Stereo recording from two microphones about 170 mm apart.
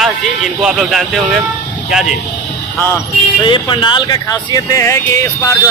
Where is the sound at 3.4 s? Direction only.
30° left (ahead or behind).